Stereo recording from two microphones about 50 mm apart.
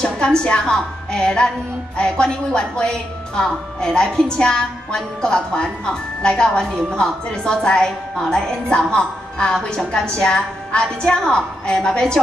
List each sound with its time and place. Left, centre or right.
0.0 s a woman's voice: centre